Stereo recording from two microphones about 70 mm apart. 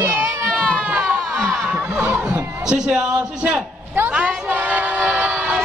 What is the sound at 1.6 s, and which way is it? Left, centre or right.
Snicker, right.